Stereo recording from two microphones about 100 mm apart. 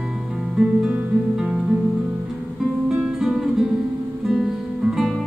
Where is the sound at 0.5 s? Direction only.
5° right (ahead or behind).